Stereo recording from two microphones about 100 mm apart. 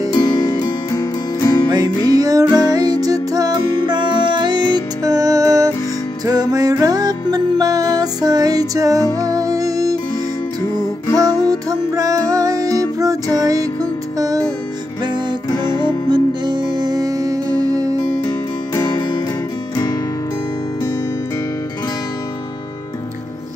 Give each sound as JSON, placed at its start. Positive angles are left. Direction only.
{"t": 0.1, "sound": "music", "side_deg": 45}
{"t": 1.7, "sound": "music", "side_deg": -40}
{"t": 11.1, "sound": "music", "side_deg": -40}
{"t": 15.6, "sound": "music", "side_deg": -50}
{"t": 18.8, "sound": "music", "side_deg": 45}